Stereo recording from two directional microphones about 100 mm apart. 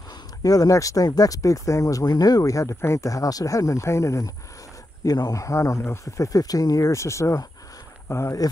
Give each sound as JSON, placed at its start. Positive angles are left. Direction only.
{"t": 0.4, "sound": "speech", "side_deg": 35}